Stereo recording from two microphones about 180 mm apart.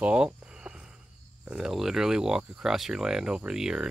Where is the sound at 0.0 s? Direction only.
5° right (ahead or behind).